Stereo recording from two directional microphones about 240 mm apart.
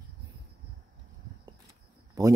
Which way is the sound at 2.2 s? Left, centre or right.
Centre.